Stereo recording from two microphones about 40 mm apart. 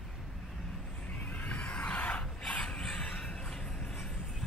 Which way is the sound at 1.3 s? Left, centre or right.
Left.